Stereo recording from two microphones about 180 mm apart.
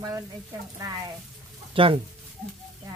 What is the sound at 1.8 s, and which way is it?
Speech, 30° right (ahead or behind).